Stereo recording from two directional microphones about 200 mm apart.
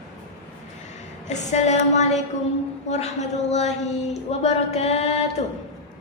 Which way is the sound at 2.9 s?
35° left (ahead or behind).